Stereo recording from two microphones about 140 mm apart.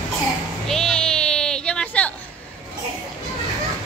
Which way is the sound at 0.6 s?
5° left (ahead or behind).